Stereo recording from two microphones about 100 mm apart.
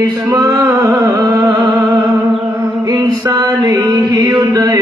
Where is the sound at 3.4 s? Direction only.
40° right (ahead or behind).